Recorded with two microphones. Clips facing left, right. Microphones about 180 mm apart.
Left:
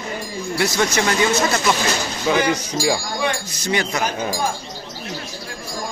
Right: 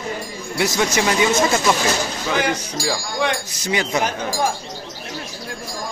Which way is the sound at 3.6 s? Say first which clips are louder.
Even; 15° right (ahead or behind).